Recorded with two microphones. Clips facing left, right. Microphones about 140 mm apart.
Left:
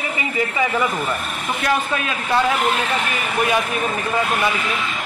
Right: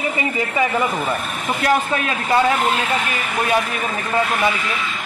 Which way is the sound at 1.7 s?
35° right (ahead or behind).